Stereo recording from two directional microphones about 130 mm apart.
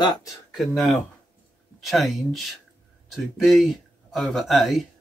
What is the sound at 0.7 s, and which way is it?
Speech, centre (ahead or behind).